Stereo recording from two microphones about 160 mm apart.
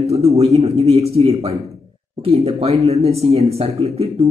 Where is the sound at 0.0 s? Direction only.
40° right (ahead or behind).